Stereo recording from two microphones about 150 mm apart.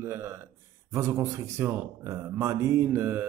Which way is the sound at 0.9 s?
20° right (ahead or behind).